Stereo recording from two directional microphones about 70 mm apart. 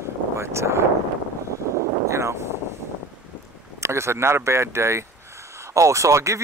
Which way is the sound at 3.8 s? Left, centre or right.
Right.